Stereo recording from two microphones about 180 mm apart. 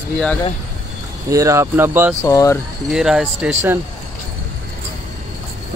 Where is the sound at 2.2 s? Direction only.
15° left (ahead or behind).